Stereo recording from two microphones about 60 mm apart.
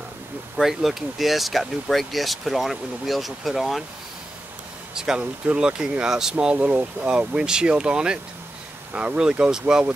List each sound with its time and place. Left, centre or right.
0.6 s speech: centre
4.9 s speech: centre
6.4 s speech: right